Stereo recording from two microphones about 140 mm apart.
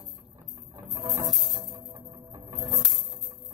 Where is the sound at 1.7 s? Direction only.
30° right (ahead or behind).